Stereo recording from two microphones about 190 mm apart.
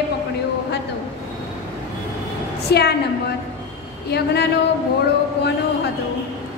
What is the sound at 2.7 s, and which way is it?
Female singing, 60° left (ahead or behind).